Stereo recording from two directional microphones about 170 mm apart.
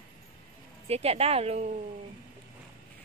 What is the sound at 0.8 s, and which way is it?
Speech, 35° right (ahead or behind).